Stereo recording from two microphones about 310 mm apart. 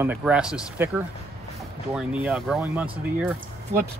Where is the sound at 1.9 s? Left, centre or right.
Centre.